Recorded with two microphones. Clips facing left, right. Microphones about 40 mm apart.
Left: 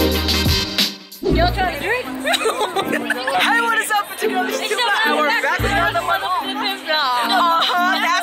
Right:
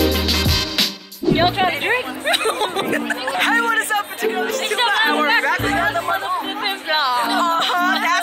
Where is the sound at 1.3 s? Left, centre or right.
Right.